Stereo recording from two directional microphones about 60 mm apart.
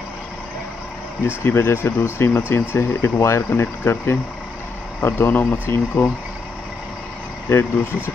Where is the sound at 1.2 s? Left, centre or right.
Left.